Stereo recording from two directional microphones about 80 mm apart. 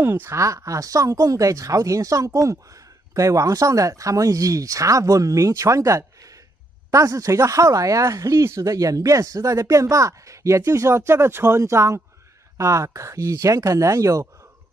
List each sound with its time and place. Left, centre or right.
0.0 s speech: right
0.4 s speech: right